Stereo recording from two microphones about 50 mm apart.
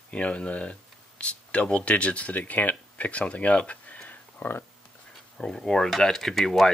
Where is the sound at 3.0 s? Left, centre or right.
Left.